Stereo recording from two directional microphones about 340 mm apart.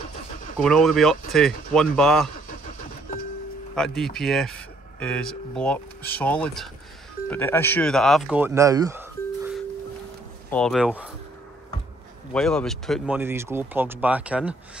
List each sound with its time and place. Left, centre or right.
0.6 s speech: centre
3.7 s speech: centre
10.5 s speech: centre
12.3 s speech: centre